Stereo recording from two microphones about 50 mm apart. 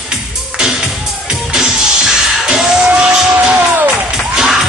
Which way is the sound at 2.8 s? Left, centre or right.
Right.